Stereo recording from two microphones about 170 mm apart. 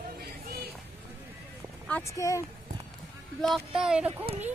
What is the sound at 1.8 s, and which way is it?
Speech, 15° left (ahead or behind).